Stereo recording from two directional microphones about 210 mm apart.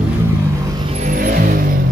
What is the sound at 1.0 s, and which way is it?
Vehicle, 40° right (ahead or behind).